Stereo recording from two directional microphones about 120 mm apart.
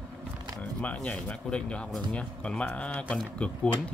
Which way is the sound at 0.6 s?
10° left (ahead or behind).